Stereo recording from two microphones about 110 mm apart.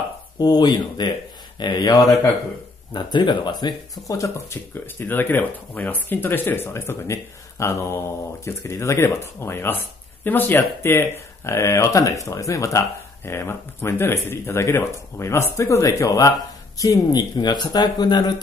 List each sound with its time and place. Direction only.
0.4 s speech: 40° left (ahead or behind)
4.1 s speech: 30° left (ahead or behind)
4.7 s speech: 20° left (ahead or behind); by 18.3 s 40° left (ahead or behind)